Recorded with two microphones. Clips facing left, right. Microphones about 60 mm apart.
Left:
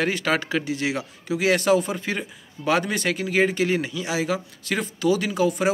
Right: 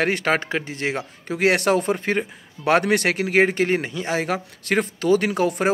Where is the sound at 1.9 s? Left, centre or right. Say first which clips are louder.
Right 5 dB; right.